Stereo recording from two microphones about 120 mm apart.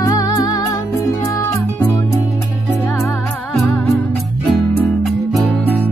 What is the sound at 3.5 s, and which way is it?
Music, centre (ahead or behind).